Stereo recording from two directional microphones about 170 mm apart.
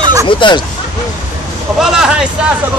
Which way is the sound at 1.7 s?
5° right (ahead or behind).